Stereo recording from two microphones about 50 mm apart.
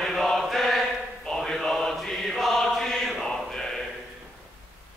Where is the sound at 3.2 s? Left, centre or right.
Centre.